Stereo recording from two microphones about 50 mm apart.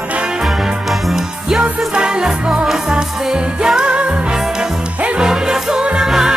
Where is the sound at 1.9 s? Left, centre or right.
Centre.